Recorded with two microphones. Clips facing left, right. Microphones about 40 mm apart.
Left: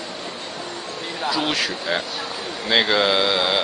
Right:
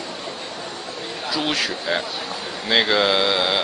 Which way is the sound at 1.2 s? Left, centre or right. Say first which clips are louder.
Left 1 dB; centre.